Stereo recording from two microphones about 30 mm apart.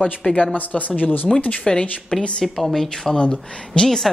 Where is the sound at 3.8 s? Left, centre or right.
Left.